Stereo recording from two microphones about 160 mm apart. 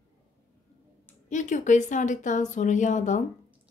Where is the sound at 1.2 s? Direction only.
50° left (ahead or behind).